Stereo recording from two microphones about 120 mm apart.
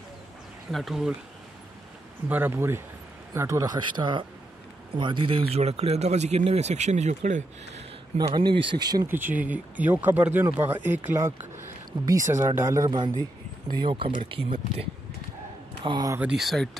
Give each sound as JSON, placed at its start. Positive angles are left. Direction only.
{"t": 0.7, "sound": "speech", "side_deg": 0}
{"t": 2.2, "sound": "speech", "side_deg": -15}
{"t": 8.2, "sound": "speech", "side_deg": -40}
{"t": 9.0, "sound": "speech", "side_deg": -15}
{"t": 12.1, "sound": "speech", "side_deg": -25}
{"t": 12.9, "sound": "speech", "side_deg": -40}
{"t": 16.2, "sound": "speech", "side_deg": -5}